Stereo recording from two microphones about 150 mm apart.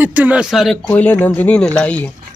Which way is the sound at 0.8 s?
10° left (ahead or behind).